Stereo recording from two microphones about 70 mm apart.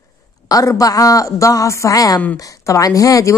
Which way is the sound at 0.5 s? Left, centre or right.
Left.